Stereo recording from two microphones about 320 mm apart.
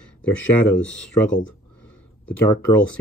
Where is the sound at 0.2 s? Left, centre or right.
Centre.